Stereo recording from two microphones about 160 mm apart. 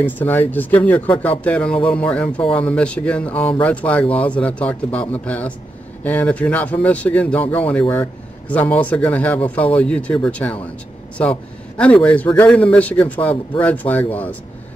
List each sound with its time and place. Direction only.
0.0 s speech: 10° left (ahead or behind)